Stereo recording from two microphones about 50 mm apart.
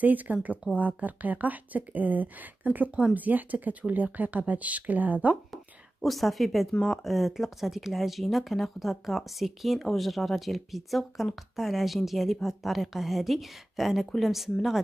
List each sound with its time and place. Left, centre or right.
0.0 s speech: right
5.5 s a woman's voice: centre